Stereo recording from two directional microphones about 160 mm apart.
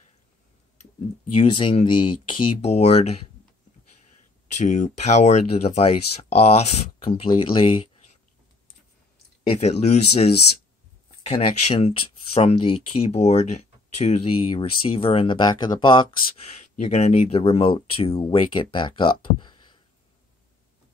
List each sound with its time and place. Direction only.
1.3 s speech: 35° left (ahead or behind)
4.6 s speech: 45° left (ahead or behind)
9.5 s speech: 40° left (ahead or behind)